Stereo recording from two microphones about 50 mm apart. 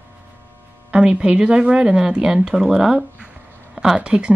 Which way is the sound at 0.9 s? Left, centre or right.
Centre.